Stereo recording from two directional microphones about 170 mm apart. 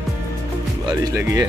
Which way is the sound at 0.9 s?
20° right (ahead or behind).